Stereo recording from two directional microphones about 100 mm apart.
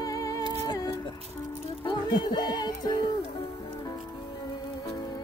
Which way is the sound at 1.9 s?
50° left (ahead or behind).